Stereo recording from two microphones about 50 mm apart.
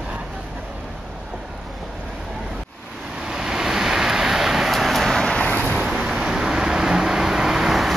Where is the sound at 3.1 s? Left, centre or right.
Centre.